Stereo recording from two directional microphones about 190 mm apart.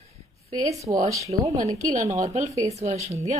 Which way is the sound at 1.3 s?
20° right (ahead or behind).